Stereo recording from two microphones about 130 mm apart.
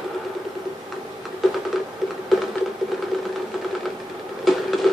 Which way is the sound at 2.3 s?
Centre (ahead or behind).